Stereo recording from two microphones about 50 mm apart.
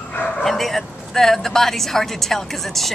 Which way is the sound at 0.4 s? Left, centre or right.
Centre.